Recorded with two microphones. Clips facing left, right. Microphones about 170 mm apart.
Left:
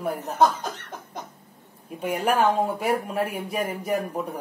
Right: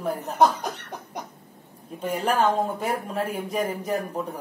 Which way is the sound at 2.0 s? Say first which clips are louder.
Left 1 dB; 10° left (ahead or behind).